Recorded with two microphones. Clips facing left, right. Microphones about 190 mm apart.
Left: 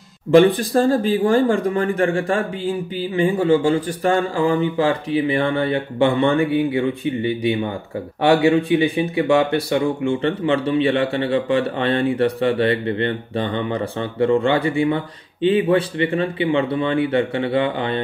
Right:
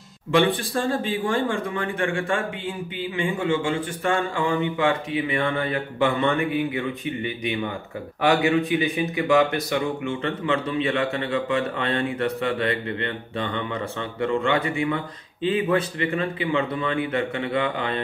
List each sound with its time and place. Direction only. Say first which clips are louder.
0.3 s speech: left 8 dB; 40° left (ahead or behind)